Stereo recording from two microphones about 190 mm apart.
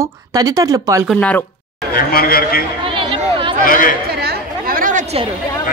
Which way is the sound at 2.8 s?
25° right (ahead or behind).